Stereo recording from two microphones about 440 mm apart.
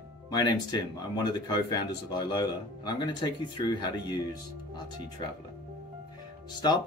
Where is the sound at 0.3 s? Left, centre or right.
Centre.